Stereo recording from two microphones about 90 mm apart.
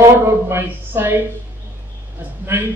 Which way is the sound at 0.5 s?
25° right (ahead or behind).